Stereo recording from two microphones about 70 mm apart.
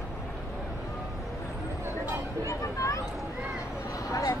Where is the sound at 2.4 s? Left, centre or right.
Left.